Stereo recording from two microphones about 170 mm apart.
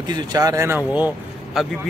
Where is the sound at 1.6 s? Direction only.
Centre (ahead or behind).